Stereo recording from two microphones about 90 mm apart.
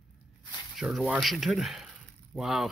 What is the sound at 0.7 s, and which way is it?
Speech, centre (ahead or behind).